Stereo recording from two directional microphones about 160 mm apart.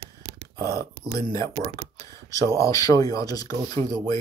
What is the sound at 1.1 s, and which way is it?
Speech, 20° left (ahead or behind).